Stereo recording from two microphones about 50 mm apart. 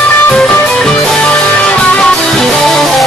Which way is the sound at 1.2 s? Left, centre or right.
Left.